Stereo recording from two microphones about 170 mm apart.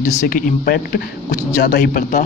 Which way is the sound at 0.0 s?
55° left (ahead or behind).